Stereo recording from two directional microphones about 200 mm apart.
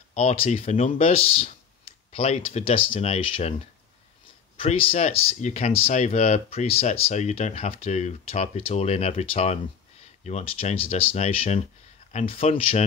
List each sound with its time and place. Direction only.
0.1 s speech: 30° left (ahead or behind)
4.6 s speech: 30° left (ahead or behind)